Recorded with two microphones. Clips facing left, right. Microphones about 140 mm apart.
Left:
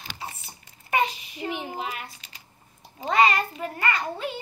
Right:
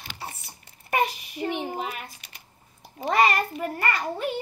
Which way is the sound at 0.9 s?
55° right (ahead or behind).